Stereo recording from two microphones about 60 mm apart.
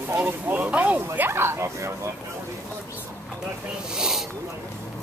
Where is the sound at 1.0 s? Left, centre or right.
Right.